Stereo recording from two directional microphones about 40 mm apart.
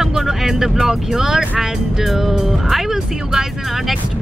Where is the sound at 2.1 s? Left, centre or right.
Centre.